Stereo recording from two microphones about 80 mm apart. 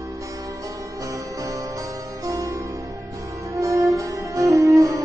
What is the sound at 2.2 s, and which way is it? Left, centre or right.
Music, right.